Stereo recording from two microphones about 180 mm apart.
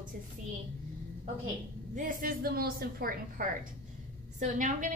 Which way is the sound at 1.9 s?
50° right (ahead or behind).